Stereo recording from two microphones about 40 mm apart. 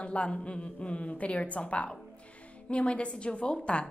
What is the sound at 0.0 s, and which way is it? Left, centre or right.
A woman's voice, left.